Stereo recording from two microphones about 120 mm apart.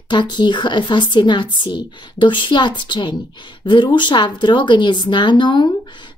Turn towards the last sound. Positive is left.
turn(degrees=40)  # may be behind; listen again after turning